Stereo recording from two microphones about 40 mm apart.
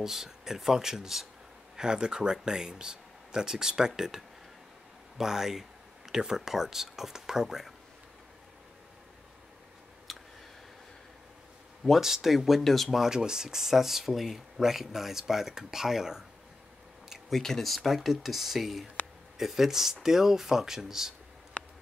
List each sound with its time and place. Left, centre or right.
0.0 s speech: centre
10.1 s a sound: centre
12.0 s speech: centre
12.9 s speech: centre
17.3 s speech: centre
17.6 s speech: centre